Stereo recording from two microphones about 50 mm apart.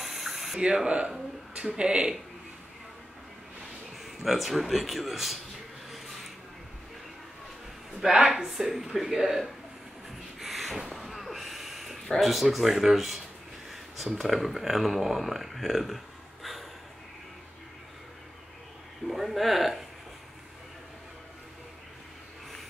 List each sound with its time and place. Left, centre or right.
0.0 s a sound: centre
0.8 s speech: centre
4.0 s speech: centre
5.9 s rub: centre
8.0 s speech: centre
10.4 s a sound: centre
13.7 s speech: centre
19.0 s speech: centre